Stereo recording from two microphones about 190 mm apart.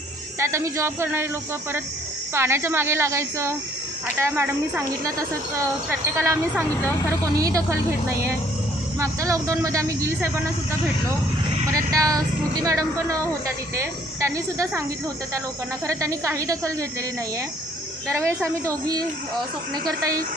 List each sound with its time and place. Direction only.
0.4 s a woman's voice: 15° right (ahead or behind)
9.0 s speech: 15° right (ahead or behind)
11.9 s speech: 20° right (ahead or behind)
15.9 s speech: 15° right (ahead or behind)
18.0 s speech: 15° right (ahead or behind)